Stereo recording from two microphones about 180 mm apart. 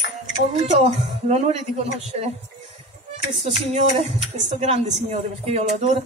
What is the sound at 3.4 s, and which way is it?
A man's voice, 35° right (ahead or behind).